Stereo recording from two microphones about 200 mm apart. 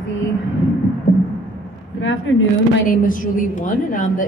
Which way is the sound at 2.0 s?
75° left (ahead or behind).